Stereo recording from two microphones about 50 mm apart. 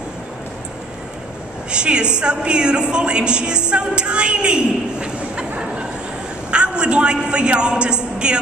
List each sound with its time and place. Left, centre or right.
1.7 s a woman's voice: centre
6.5 s a woman's voice: centre